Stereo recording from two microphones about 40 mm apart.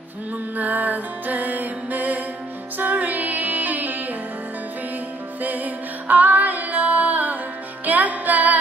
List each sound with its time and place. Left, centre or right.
0.6 s music: right
5.4 s music: right